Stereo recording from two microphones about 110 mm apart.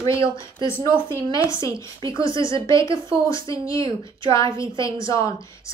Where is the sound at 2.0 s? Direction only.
50° right (ahead or behind).